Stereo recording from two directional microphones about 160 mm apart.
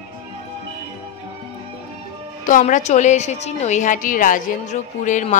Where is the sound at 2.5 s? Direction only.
50° left (ahead or behind).